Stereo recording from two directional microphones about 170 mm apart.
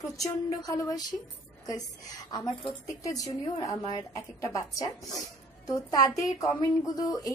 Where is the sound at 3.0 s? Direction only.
20° left (ahead or behind).